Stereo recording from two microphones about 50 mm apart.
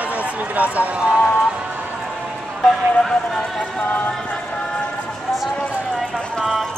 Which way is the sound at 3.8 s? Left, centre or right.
Left.